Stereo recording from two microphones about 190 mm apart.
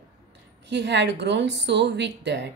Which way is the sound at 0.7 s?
65° right (ahead or behind).